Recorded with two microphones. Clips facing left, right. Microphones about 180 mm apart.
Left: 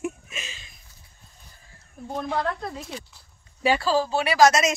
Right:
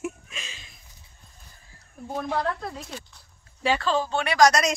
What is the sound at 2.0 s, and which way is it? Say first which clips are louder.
Speech: even; 5° right (ahead or behind).